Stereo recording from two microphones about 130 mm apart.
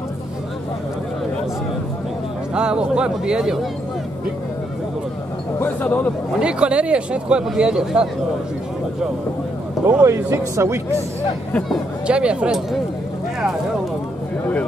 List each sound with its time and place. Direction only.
2.5 s speech: 5° right (ahead or behind)
5.6 s speech: 10° left (ahead or behind)
6.4 s speech: 10° right (ahead or behind)
10.0 s speech: 20° right (ahead or behind)
12.1 s speech: 10° right (ahead or behind)